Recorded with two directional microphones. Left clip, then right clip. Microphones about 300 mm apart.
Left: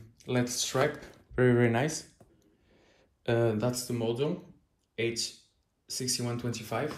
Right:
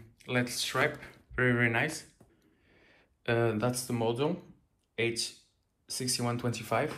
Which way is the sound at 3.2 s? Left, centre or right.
Centre.